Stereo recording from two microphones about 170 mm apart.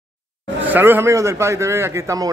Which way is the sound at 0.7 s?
10° right (ahead or behind).